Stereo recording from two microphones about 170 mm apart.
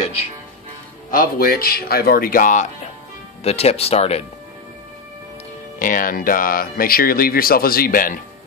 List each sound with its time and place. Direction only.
1.1 s speech: 55° left (ahead or behind); by 4.2 s 35° left (ahead or behind)
5.8 s speech: 50° left (ahead or behind)